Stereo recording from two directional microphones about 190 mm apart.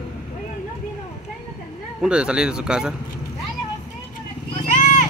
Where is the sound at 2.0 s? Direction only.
5° right (ahead or behind).